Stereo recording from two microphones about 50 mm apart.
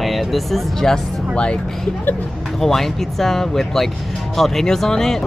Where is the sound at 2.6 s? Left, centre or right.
Centre.